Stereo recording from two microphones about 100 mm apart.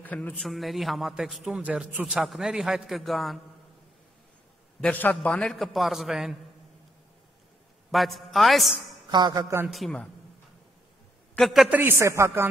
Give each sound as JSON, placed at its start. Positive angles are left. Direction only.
{"t": 0.0, "sound": "a man's voice", "side_deg": 15}
{"t": 0.5, "sound": "a man's voice", "side_deg": 0}
{"t": 4.8, "sound": "a man's voice", "side_deg": 15}
{"t": 5.2, "sound": "a man's voice", "side_deg": 5}
{"t": 7.9, "sound": "a man's voice", "side_deg": 0}
{"t": 9.1, "sound": "speech", "side_deg": -45}
{"t": 9.7, "sound": "a man's voice", "side_deg": 0}
{"t": 11.3, "sound": "a man's voice", "side_deg": 0}
{"t": 11.7, "sound": "a man's voice", "side_deg": -20}